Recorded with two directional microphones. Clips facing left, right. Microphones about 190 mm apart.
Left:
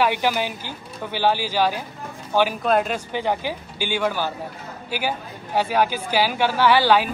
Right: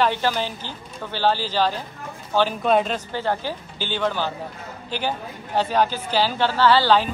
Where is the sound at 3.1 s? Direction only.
15° left (ahead or behind).